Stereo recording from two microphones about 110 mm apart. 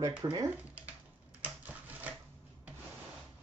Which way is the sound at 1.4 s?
15° right (ahead or behind).